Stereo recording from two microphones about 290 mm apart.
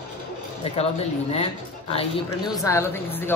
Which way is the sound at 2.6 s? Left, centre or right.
Centre.